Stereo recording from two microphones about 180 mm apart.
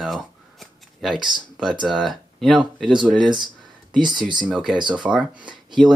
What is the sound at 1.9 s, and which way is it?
Speech, centre (ahead or behind).